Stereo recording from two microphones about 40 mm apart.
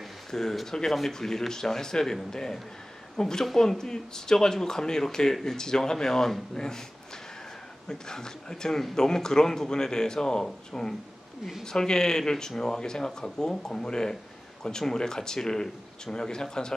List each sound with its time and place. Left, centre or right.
0.3 s speech: centre
7.9 s speech: centre